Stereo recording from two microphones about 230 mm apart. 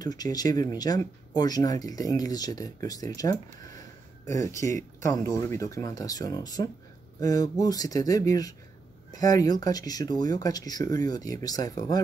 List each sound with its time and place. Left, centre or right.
0.0 s speech: centre
4.3 s speech: centre